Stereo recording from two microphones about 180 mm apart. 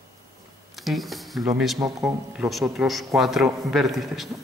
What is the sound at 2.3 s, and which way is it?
A man's voice, centre (ahead or behind).